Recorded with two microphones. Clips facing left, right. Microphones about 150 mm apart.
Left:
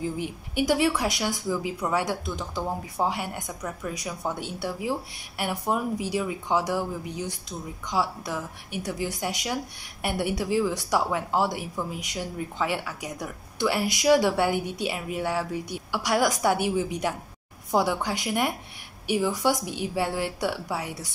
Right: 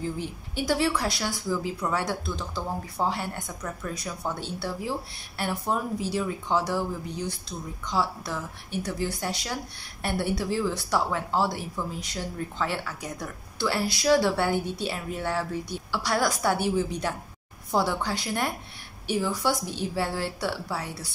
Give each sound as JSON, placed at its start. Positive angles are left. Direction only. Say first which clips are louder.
{"t": 0.0, "sound": "speech", "louder": "left 2 dB", "side_deg": 15}